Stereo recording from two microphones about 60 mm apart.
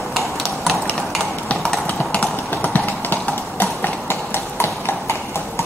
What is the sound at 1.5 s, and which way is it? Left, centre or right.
Clip-clop, left.